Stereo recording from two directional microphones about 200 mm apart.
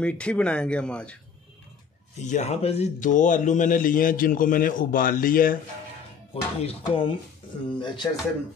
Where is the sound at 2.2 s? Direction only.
35° left (ahead or behind).